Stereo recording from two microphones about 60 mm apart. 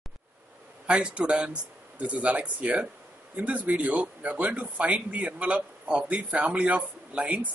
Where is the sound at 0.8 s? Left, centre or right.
Centre.